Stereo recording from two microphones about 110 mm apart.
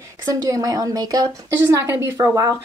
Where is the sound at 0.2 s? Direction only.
30° right (ahead or behind).